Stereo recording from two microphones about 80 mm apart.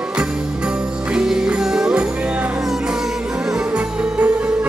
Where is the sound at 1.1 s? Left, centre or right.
Centre.